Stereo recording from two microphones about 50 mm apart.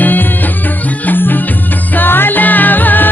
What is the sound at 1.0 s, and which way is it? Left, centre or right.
Music, left.